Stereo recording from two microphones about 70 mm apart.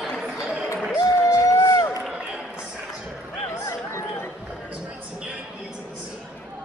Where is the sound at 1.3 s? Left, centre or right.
Left.